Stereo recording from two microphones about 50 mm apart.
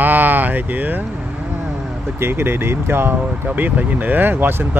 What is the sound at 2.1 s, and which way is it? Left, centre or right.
Speech, right.